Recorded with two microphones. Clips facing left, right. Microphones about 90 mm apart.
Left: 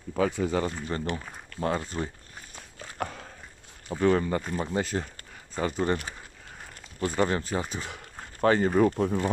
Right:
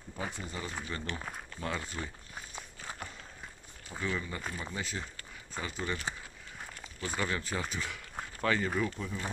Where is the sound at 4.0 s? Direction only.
55° left (ahead or behind).